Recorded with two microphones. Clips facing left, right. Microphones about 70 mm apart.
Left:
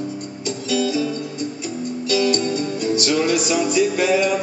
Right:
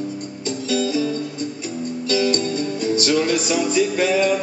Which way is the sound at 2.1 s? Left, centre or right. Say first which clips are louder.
Left 1 dB; right.